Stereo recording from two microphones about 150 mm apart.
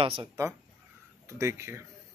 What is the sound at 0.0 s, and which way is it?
Speech, 35° right (ahead or behind).